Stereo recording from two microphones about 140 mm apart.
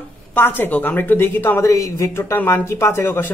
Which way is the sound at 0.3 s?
15° left (ahead or behind).